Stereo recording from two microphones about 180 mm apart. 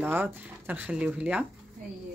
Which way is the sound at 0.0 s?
10° right (ahead or behind).